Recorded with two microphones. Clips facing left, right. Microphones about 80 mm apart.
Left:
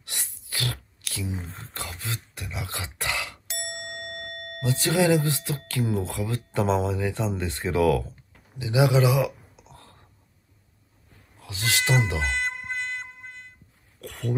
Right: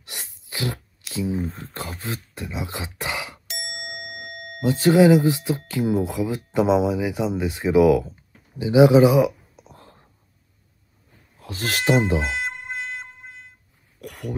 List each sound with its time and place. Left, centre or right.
0.0 s a sound: right
1.6 s speech: right
4.6 s speech: right
11.4 s speech: right
11.8 s speech: centre
12.2 s music: centre
14.0 s throat clearing: centre